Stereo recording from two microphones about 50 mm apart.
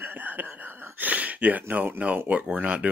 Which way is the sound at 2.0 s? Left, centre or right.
Right.